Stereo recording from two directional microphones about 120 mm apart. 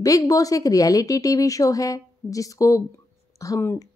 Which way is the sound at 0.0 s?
30° left (ahead or behind).